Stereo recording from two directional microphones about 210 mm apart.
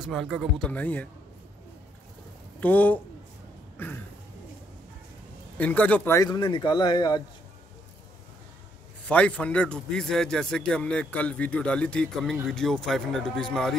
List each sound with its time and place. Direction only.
0.0 s a man's voice: centre (ahead or behind)
2.6 s speech: 10° left (ahead or behind)
5.6 s speech: 5° left (ahead or behind)
9.0 s a man's voice: 5° left (ahead or behind)